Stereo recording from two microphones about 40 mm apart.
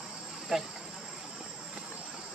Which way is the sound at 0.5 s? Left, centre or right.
Centre.